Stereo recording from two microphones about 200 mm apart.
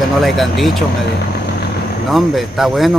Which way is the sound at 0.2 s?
Centre (ahead or behind).